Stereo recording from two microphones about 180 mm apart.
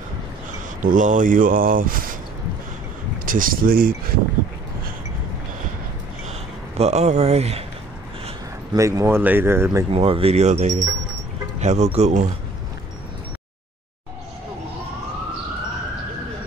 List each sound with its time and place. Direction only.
0.8 s speech: 45° right (ahead or behind)
3.3 s speech: 50° right (ahead or behind)
6.8 s speech: 40° right (ahead or behind)
8.7 s speech: 15° right (ahead or behind)
9.8 s speech: 30° right (ahead or behind)